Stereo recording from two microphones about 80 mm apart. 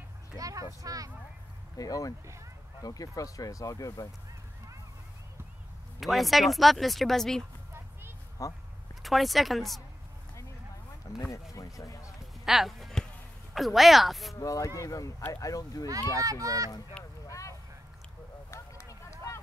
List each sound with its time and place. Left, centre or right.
0.4 s speech: right
1.8 s speech: left
5.9 s speech: centre
8.4 s speech: left
9.0 s speech: centre
11.3 s speech: left
12.4 s speech: centre
14.3 s speech: left
16.2 s speech: right
17.0 s a sound: centre
17.3 s vehicle: left
18.5 s a sound: left